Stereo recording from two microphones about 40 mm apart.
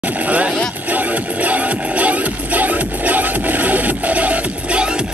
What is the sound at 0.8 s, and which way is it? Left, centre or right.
Music, right.